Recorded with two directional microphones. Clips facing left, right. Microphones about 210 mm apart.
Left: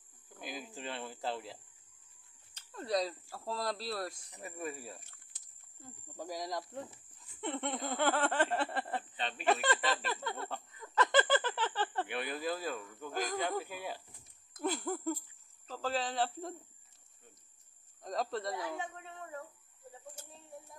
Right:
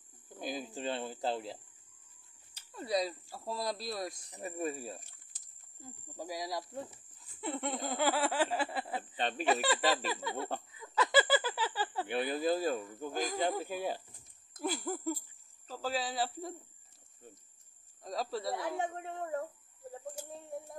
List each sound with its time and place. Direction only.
0.4 s speech: 35° right (ahead or behind)
2.5 s speech: 10° right (ahead or behind)
4.3 s speech: 30° right (ahead or behind)
6.1 s snicker: 10° right (ahead or behind)
10.7 s a sound: 5° right (ahead or behind)
12.1 s speech: 35° right (ahead or behind)
13.1 s snicker: 10° right (ahead or behind)
13.7 s speech: 35° right (ahead or behind)
14.6 s a sound: 5° right (ahead or behind)
15.7 s snicker: 10° right (ahead or behind)
18.0 s a sound: 5° right (ahead or behind)
18.5 s speech: 55° right (ahead or behind)